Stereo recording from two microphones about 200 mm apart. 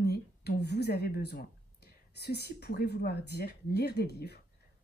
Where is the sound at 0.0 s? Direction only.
55° left (ahead or behind).